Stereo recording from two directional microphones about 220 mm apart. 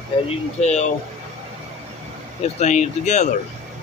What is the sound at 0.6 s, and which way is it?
Speech, 30° left (ahead or behind).